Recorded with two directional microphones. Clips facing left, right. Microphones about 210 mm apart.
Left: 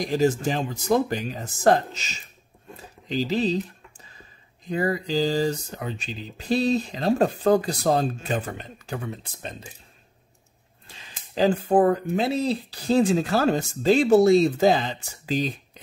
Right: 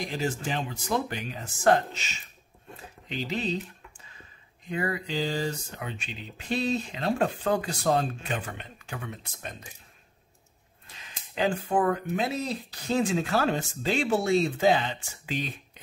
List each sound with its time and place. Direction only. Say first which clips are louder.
0.0 s speech: left 9 dB; 40° left (ahead or behind)
4.6 s speech: left 5 dB; 35° left (ahead or behind)
10.9 s speech: left 1 dB; 35° left (ahead or behind)